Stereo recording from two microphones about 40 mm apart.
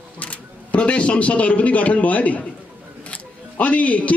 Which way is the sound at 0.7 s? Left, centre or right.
Left.